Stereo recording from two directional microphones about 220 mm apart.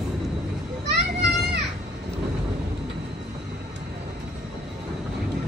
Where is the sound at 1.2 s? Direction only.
50° right (ahead or behind).